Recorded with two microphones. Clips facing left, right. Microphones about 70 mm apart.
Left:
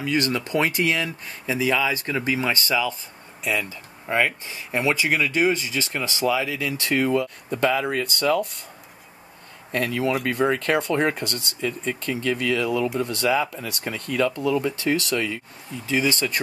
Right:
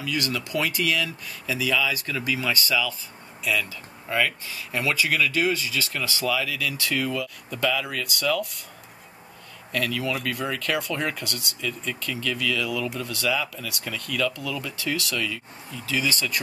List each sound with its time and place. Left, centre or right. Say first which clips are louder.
0.0 s speech: left 5 dB; left
9.7 s speech: left 4 dB; left